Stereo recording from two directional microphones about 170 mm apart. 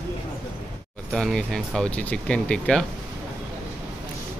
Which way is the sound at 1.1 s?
5° left (ahead or behind).